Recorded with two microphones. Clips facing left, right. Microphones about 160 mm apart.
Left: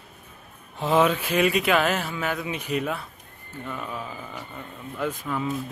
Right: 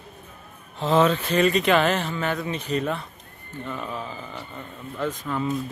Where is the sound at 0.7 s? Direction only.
10° left (ahead or behind).